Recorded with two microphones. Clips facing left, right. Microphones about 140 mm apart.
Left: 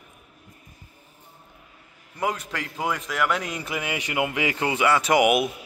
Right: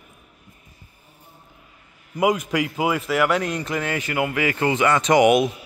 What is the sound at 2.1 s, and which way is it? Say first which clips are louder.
A man's voice: right 8 dB; 10° right (ahead or behind).